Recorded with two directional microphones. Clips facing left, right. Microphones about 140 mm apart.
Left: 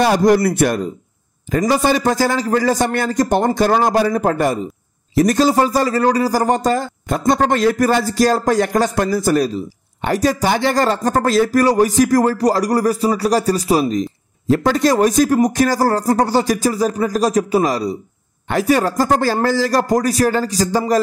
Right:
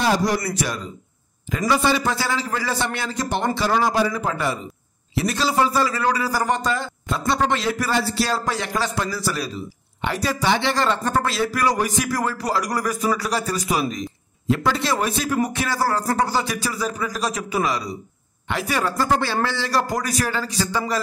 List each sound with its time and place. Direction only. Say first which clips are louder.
0.0 s a man's voice: left 8 dB; 55° left (ahead or behind)
1.5 s a man's voice: left 5 dB; 45° left (ahead or behind)